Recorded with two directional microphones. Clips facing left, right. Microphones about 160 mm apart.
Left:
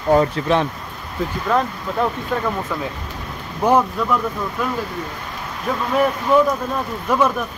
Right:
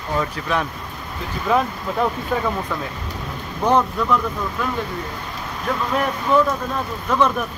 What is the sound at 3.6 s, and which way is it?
Speech, 10° left (ahead or behind).